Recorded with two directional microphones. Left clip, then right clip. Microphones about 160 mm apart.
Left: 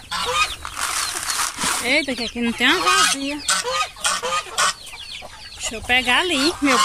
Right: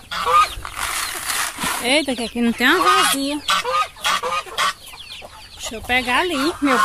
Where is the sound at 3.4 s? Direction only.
55° left (ahead or behind).